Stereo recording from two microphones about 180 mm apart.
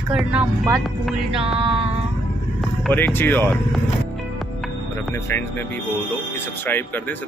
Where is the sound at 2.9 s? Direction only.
10° left (ahead or behind).